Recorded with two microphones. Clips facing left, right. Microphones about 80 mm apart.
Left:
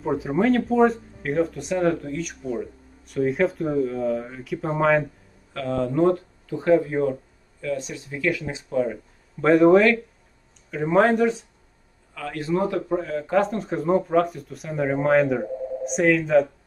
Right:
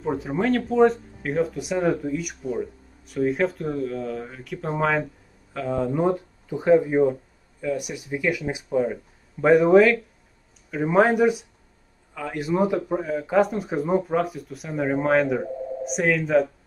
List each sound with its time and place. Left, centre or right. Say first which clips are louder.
0.0 s speech: left 2 dB; centre
5.5 s speech: even; centre